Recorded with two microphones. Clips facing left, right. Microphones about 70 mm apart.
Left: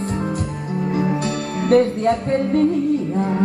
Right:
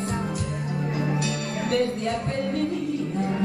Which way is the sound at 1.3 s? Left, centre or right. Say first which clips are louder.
Left 9 dB; left.